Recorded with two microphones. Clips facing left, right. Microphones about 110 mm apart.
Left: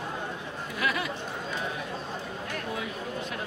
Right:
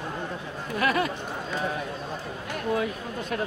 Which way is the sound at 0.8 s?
45° right (ahead or behind).